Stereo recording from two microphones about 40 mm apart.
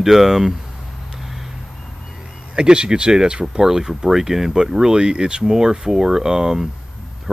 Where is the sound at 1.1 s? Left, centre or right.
Centre.